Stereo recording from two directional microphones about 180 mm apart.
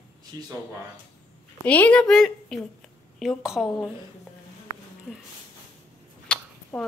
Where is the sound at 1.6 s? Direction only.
10° left (ahead or behind).